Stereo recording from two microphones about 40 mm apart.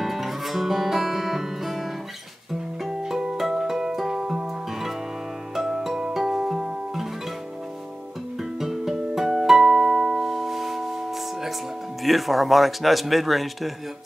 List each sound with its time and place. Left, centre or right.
0.0 s guitar: centre
3.0 s music: centre
8.4 s music: centre
12.0 s a man's voice: centre